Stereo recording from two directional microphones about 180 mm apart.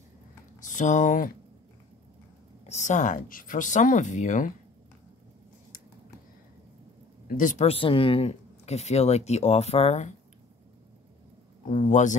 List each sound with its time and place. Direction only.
0.7 s speech: 45° left (ahead or behind)
2.6 s speech: 40° left (ahead or behind)
7.2 s speech: 45° left (ahead or behind)
11.6 s speech: 45° left (ahead or behind)